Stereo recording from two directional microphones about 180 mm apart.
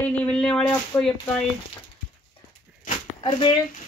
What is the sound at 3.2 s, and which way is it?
Speech, 25° left (ahead or behind).